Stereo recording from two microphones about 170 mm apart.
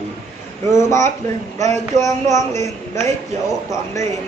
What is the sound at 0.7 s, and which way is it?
A man's voice, 15° left (ahead or behind).